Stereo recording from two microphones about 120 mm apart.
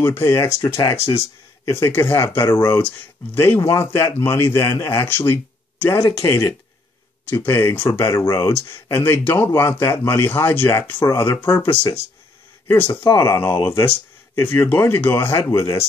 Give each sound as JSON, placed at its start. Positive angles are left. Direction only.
{"t": 0.0, "sound": "a man's voice", "side_deg": 20}
{"t": 7.2, "sound": "a man's voice", "side_deg": 20}